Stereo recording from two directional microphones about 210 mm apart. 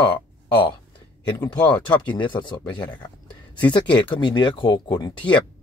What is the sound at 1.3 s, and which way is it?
Speech, 10° left (ahead or behind).